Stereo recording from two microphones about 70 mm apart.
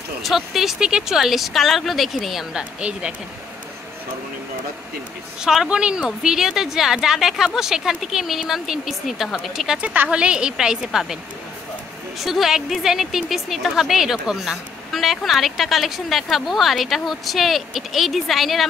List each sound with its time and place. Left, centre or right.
0.2 s a woman's voice: centre
2.5 s a woman's voice: centre
5.4 s a woman's voice: centre
9.8 s a woman's voice: right
12.2 s a woman's voice: centre